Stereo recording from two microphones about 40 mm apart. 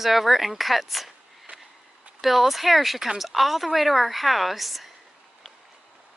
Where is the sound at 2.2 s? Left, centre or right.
Centre.